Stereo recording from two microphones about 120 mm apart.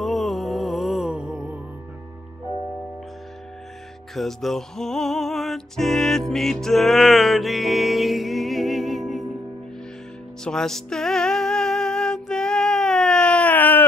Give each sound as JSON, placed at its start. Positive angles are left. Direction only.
{"t": 0.0, "sound": "music", "side_deg": 0}
{"t": 4.1, "sound": "music", "side_deg": 0}
{"t": 10.4, "sound": "music", "side_deg": 5}